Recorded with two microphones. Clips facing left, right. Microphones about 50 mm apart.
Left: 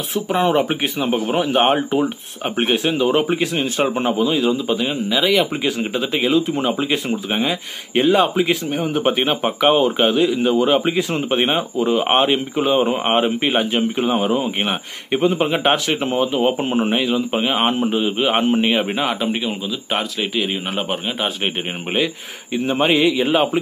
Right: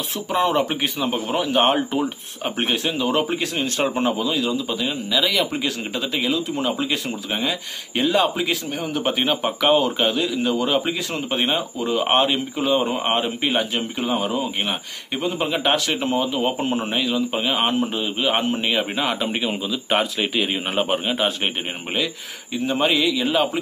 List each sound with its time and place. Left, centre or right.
0.1 s a man's voice: centre
15.4 s a man's voice: left
19.0 s speech: centre
21.9 s a man's voice: left